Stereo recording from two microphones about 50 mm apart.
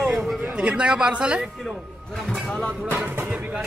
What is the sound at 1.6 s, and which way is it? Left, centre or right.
Speech, centre.